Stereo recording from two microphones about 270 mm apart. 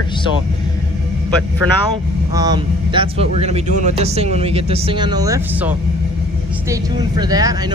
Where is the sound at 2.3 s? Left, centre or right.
Centre.